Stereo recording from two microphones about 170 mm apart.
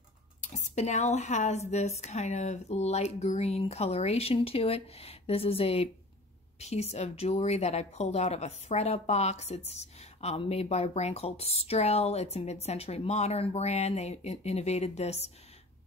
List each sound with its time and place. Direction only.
0.5 s speech: 45° left (ahead or behind)